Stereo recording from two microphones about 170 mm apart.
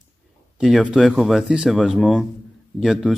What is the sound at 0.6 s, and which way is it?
A man's voice, 5° right (ahead or behind).